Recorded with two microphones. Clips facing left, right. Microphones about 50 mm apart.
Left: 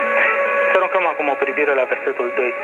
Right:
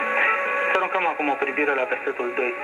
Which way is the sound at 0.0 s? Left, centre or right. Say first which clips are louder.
Left 5 dB; left.